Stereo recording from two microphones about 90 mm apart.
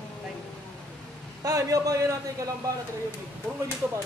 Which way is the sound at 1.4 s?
40° right (ahead or behind).